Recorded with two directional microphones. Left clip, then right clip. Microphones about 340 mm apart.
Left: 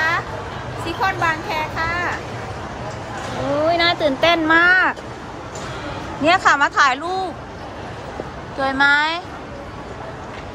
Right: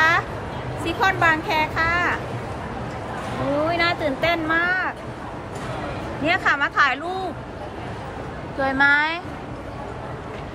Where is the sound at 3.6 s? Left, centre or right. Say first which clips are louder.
Left 7 dB; centre.